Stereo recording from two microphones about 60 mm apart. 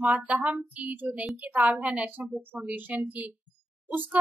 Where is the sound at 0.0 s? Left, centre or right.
Right.